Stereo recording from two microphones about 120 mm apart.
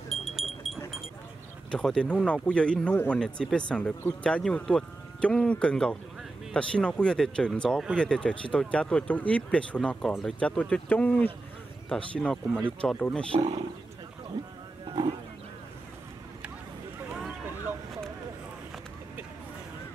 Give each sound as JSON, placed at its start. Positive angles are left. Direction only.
{"t": 0.1, "sound": "wind chime", "side_deg": 0}
{"t": 1.7, "sound": "speech", "side_deg": 5}
{"t": 14.9, "sound": "a sound", "side_deg": -40}